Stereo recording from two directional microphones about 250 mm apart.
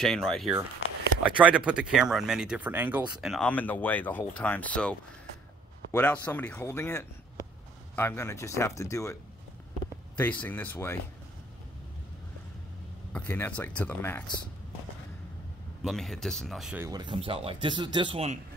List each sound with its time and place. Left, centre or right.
0.0 s speech: centre
10.4 s speech: centre
13.1 s speech: centre
15.8 s speech: centre; by 18.4 s right